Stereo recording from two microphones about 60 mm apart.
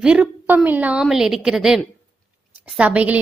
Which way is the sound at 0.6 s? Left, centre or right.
Right.